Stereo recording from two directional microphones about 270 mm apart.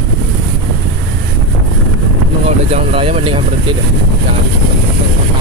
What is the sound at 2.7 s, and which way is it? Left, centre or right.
Vehicle, right.